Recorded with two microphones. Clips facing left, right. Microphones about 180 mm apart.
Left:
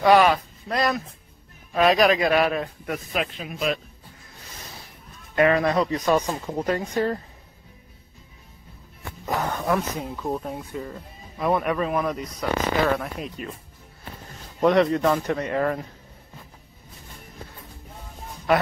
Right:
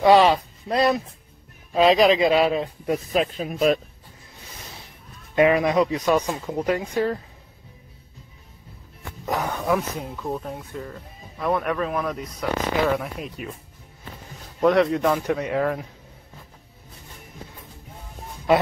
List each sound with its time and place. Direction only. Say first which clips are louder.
0.0 s a man's voice: right 2 dB; 25° right (ahead or behind)
3.1 s a man's voice: right 5 dB; 35° right (ahead or behind)
5.3 s speech: right 2 dB; 15° right (ahead or behind)
9.2 s speech: even; centre (ahead or behind)
14.6 s speech: even; centre (ahead or behind)